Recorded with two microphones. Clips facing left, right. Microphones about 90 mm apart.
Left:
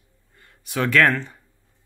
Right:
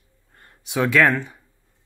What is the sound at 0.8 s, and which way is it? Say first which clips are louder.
Speech: right 1 dB; 10° right (ahead or behind).